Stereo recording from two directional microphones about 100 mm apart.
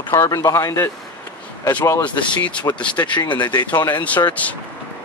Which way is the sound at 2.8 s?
10° left (ahead or behind).